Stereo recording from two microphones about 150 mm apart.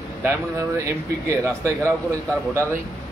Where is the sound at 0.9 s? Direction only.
20° right (ahead or behind).